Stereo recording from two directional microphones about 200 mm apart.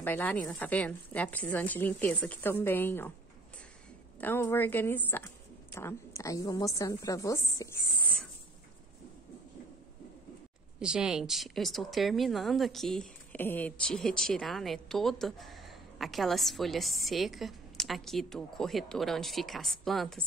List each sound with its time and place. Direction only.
0.0 s a woman's voice: 10° left (ahead or behind)
4.2 s a woman's voice: 10° left (ahead or behind)
10.8 s speech: 5° right (ahead or behind)